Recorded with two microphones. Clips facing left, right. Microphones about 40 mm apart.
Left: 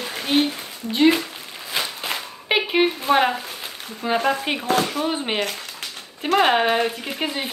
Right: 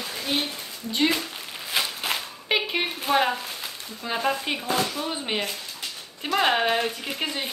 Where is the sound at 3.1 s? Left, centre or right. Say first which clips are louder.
Left 3 dB; centre.